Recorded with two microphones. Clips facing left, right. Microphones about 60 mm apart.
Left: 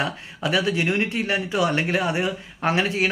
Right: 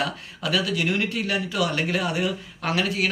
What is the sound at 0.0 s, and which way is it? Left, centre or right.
A man's voice, left.